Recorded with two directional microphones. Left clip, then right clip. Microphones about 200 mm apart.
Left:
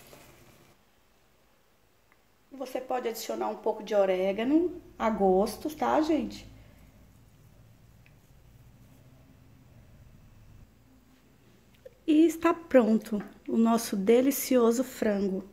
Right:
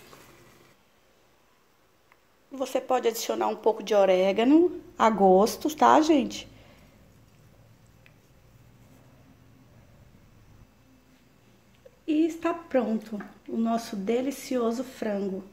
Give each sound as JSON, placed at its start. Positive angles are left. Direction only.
{"t": 2.5, "sound": "a woman's voice", "side_deg": -40}
{"t": 12.1, "sound": "a woman's voice", "side_deg": 30}